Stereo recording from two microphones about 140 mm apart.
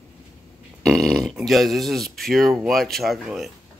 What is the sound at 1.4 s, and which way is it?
Speech, centre (ahead or behind).